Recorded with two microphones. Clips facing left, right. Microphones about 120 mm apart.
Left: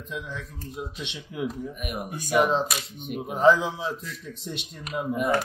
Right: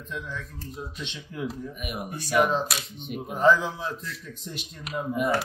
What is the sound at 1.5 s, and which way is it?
Speech, centre (ahead or behind).